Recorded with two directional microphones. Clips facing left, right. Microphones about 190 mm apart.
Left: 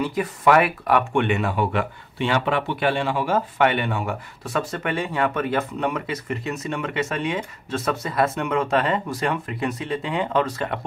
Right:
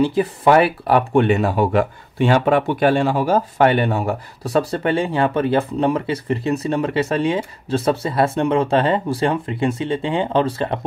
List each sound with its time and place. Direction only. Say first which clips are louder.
0.0 s speech: right 5 dB; 30° right (ahead or behind)